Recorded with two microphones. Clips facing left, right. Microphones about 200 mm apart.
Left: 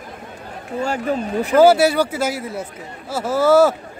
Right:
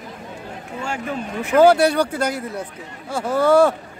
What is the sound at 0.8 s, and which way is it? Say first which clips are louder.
Speech: left 6 dB; 40° left (ahead or behind).